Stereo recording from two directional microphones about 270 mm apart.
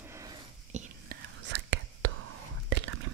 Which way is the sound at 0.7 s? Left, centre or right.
Right.